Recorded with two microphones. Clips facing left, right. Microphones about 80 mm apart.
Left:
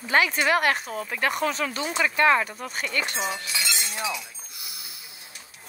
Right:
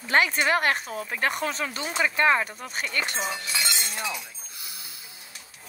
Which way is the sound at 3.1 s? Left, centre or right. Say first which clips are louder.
Left 1 dB; left.